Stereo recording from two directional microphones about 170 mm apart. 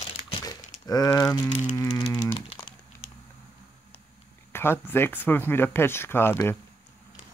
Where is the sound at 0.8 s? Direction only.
20° left (ahead or behind).